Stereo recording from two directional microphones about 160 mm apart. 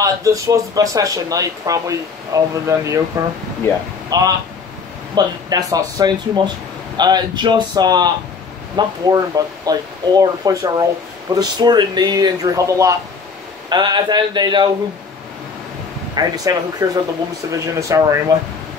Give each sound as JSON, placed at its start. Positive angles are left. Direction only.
{"t": 0.0, "sound": "speech", "side_deg": -20}
{"t": 3.7, "sound": "speech", "side_deg": 15}
{"t": 4.1, "sound": "speech", "side_deg": -25}
{"t": 16.2, "sound": "speech", "side_deg": -25}